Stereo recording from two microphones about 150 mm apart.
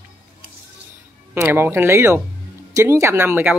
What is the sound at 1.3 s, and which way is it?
Speech, 15° right (ahead or behind).